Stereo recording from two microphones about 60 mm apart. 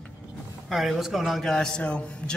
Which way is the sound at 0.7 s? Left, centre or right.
Centre.